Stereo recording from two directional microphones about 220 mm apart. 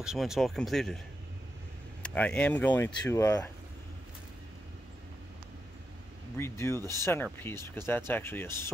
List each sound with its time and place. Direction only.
0.0 s speech: centre (ahead or behind)
2.0 s speech: 5° left (ahead or behind)
6.3 s speech: 10° left (ahead or behind)
6.8 s speech: 15° right (ahead or behind)
7.3 s speech: 10° left (ahead or behind)